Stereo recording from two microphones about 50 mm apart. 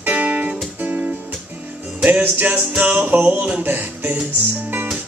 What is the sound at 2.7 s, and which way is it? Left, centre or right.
Music, right.